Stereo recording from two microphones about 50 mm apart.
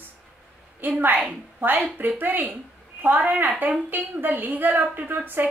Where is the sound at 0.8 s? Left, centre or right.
Right.